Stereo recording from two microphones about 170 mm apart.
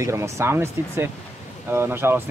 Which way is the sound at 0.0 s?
15° right (ahead or behind).